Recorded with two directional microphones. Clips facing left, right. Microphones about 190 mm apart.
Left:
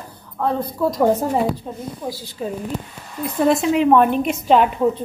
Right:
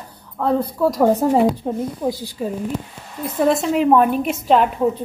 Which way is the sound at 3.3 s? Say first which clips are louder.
Even; centre (ahead or behind).